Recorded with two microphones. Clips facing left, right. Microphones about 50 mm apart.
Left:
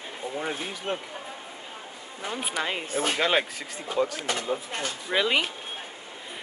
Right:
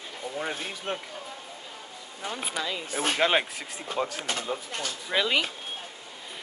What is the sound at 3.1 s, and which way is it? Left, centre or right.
Speech, centre.